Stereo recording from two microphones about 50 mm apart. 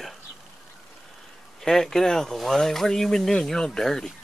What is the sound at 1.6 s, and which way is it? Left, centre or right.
Speech, centre.